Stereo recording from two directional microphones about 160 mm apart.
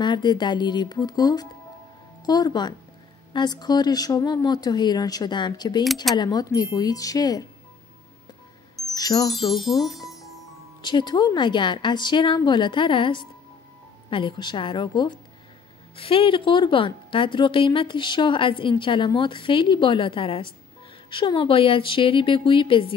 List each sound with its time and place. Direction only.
0.0 s speech: 30° left (ahead or behind)
8.9 s speech: 25° left (ahead or behind)
9.5 s music: centre (ahead or behind)
10.8 s a woman's voice: 30° left (ahead or behind)